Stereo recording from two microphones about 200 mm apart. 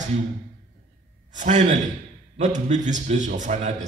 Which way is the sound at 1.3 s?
35° right (ahead or behind).